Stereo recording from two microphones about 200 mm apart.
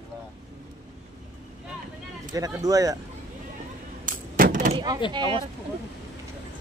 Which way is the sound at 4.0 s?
40° right (ahead or behind).